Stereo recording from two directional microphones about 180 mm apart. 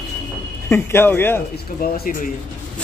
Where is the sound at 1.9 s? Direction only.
55° left (ahead or behind).